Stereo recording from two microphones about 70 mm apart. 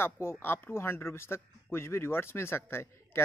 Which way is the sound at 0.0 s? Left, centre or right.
Left.